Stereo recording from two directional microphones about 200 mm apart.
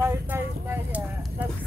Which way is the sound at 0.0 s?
10° right (ahead or behind).